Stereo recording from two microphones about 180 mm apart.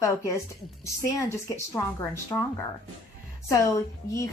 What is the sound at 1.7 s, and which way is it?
Speech, 15° left (ahead or behind).